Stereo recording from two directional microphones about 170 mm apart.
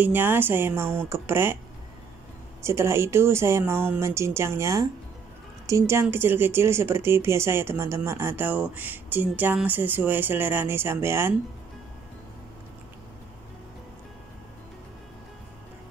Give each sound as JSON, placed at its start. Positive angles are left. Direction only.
{"t": 0.0, "sound": "speech", "side_deg": -10}
{"t": 2.6, "sound": "speech", "side_deg": -15}